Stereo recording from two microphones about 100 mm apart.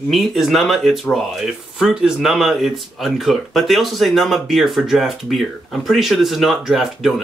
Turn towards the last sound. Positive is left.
turn(degrees=-5)  # may be behind; listen again after turning